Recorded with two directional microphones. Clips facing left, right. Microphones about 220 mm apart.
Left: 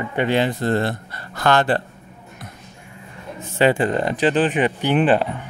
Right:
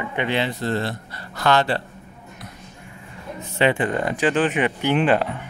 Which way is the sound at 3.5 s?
40° left (ahead or behind).